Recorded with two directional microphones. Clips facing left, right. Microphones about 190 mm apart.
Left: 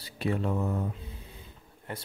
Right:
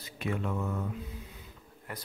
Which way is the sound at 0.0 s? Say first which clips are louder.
Left 4 dB; 35° left (ahead or behind).